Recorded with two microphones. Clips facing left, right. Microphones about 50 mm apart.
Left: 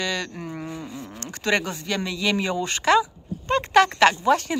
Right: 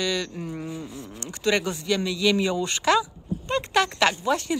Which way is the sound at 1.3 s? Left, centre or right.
Left.